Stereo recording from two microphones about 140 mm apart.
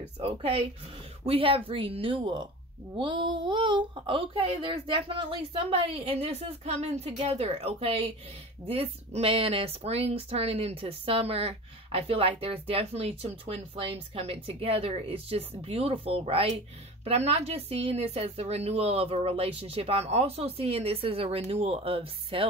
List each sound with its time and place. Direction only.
0.0 s speech: 45° right (ahead or behind)